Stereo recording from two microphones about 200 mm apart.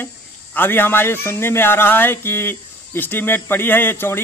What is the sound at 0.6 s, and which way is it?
A man's voice, 10° left (ahead or behind).